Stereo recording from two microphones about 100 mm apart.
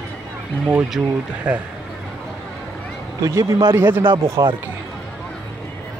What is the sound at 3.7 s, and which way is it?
Speech, 20° right (ahead or behind).